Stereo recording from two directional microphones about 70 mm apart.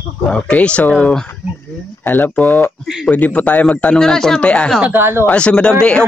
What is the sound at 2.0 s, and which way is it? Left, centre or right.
Speech, left.